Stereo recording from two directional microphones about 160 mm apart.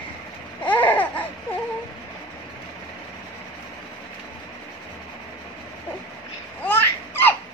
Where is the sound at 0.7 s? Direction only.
10° left (ahead or behind).